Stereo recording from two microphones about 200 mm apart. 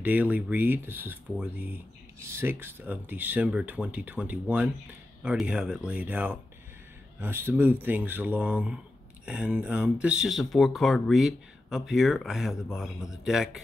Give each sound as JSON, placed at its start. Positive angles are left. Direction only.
{"t": 0.0, "sound": "speech", "side_deg": -10}